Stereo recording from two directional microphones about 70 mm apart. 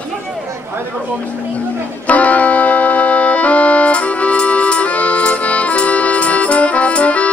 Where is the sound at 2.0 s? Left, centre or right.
Left.